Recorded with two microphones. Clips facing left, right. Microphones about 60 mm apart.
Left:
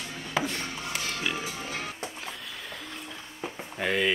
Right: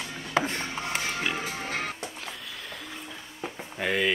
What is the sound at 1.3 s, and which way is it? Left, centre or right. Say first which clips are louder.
Music: right 3 dB; right.